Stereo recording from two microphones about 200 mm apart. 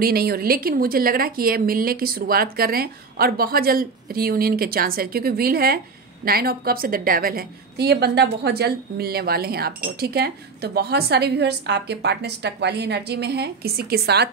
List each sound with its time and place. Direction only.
0.0 s a woman's voice: 50° right (ahead or behind)